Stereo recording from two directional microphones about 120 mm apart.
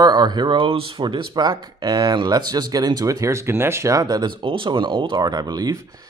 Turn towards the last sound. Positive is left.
turn(degrees=-35)  # may be behind; listen again after turning